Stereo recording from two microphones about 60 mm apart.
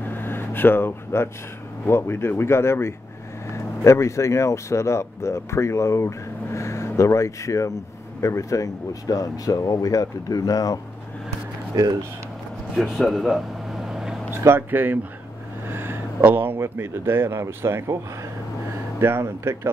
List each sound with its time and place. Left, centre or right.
0.0 s vehicle: left
1.9 s speech: left
12.7 s a sound: centre
14.4 s speech: right
18.9 s speech: right